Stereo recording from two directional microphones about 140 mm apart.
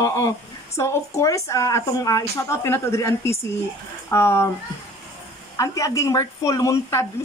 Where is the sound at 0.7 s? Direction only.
20° left (ahead or behind).